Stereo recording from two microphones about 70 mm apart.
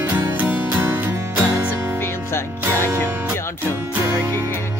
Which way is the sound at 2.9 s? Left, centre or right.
Right.